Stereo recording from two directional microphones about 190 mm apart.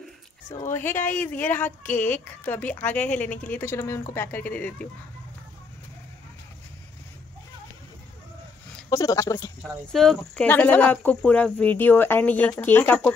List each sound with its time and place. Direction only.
0.7 s speech: 10° left (ahead or behind)
8.9 s speech: 15° left (ahead or behind)
9.6 s speech: centre (ahead or behind)